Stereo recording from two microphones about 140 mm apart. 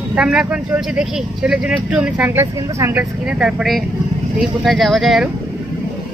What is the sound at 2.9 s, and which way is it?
Speech, 5° right (ahead or behind).